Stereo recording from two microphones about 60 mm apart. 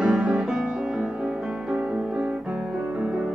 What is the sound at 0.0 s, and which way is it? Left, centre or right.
Music, centre.